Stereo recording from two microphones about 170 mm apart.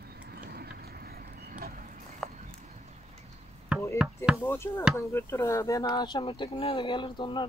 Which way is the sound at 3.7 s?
5° right (ahead or behind).